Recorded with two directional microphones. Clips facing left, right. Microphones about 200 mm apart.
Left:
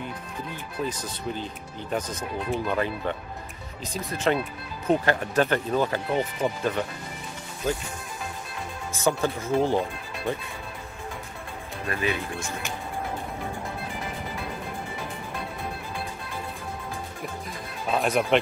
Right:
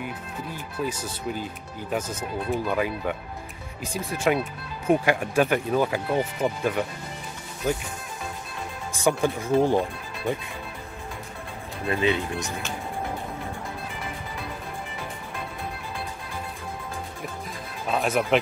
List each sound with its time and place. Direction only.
0.8 s speech: 10° right (ahead or behind)
8.9 s speech: 15° right (ahead or behind)
11.9 s speech: 20° right (ahead or behind)
17.8 s speech: centre (ahead or behind)